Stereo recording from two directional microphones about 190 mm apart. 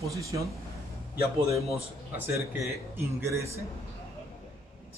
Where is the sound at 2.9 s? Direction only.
15° right (ahead or behind).